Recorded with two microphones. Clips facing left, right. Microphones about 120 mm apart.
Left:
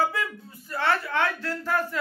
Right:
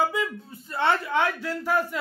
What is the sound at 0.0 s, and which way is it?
Speech, 20° right (ahead or behind).